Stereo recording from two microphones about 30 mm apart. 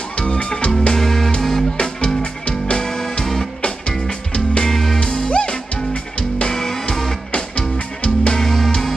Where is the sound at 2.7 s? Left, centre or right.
Left.